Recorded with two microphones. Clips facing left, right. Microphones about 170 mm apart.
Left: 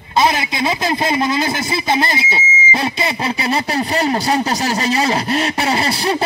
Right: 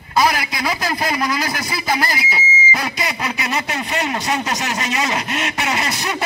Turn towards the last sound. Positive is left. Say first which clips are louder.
# left 5 dB
turn(degrees=30)  # may be behind; listen again after turning